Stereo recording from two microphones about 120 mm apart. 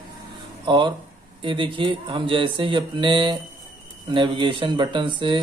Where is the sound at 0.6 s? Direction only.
45° right (ahead or behind).